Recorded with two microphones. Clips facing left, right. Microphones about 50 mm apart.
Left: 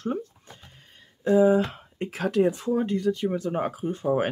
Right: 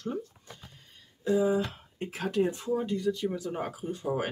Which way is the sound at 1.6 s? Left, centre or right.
Left.